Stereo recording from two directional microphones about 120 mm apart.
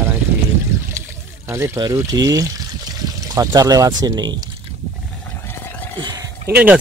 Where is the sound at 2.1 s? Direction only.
30° right (ahead or behind).